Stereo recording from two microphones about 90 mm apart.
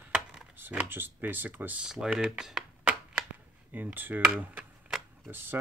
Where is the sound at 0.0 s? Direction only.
10° right (ahead or behind).